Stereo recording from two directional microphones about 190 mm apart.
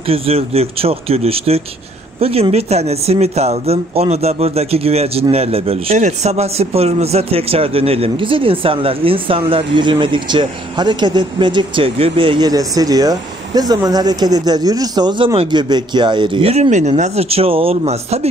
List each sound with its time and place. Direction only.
0.0 s speech: 30° right (ahead or behind)